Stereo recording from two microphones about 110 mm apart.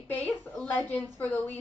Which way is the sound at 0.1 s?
15° left (ahead or behind).